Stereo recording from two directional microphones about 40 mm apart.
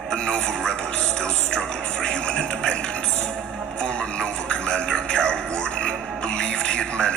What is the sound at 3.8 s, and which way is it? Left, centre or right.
Music, left.